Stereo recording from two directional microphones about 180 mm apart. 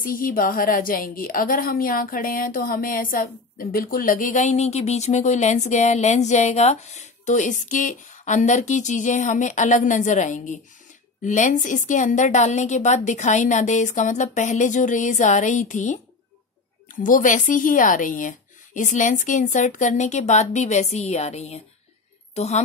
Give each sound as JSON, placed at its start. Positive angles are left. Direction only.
{"t": 0.0, "sound": "a woman's voice", "side_deg": 50}
{"t": 17.0, "sound": "a woman's voice", "side_deg": 45}